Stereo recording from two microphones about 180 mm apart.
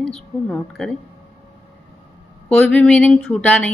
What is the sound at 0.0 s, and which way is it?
Speech, 5° left (ahead or behind).